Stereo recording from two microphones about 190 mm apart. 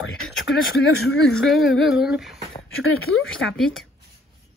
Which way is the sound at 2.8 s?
90° left.